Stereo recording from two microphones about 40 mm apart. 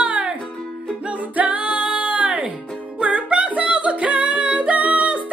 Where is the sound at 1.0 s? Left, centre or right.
Right.